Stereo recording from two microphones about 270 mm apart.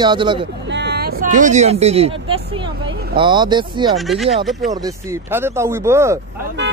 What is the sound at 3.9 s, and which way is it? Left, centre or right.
Speech, centre.